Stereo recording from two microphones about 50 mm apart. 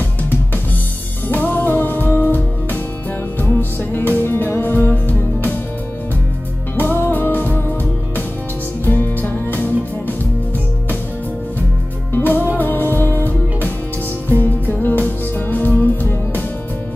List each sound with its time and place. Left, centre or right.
1.3 s music: left
6.8 s music: left
8.8 s music: left
12.1 s music: left